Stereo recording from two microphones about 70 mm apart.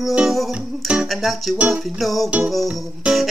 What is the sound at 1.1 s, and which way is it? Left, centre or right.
Music, centre.